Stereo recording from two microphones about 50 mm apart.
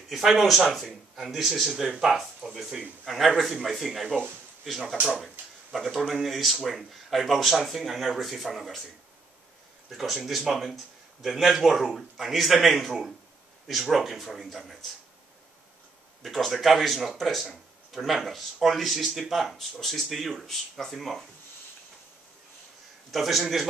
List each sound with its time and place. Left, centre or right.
0.1 s speech: centre
9.8 s speech: centre
16.2 s speech: centre
23.1 s speech: centre